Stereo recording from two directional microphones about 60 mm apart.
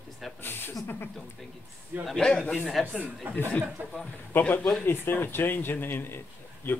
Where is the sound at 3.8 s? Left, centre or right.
Right.